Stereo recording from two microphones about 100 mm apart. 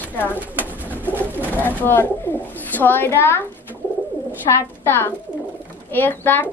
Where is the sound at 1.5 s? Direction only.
20° left (ahead or behind).